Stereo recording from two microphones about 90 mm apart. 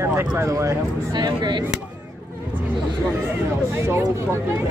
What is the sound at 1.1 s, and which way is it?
Speech, 55° right (ahead or behind).